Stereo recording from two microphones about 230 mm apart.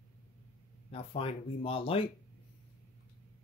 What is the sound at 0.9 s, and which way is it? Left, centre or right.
Speech, left.